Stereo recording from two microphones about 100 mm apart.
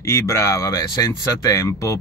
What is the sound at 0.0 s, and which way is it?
Speech, 30° left (ahead or behind).